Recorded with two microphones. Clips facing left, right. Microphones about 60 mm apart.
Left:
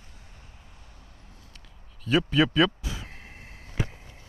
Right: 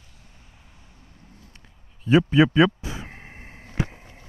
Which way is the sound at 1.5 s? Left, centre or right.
Right.